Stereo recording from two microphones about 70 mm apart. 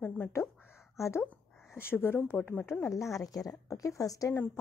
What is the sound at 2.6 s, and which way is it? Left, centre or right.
A woman's voice, left.